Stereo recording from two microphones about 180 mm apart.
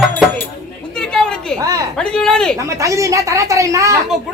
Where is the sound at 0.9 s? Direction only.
5° left (ahead or behind).